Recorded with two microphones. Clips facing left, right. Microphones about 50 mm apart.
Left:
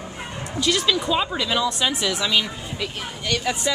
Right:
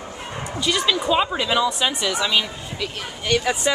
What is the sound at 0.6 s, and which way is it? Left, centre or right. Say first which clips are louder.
Speech: even; centre.